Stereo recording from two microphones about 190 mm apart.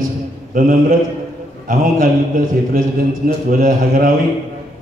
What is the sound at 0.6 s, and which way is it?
A man's voice, 45° right (ahead or behind).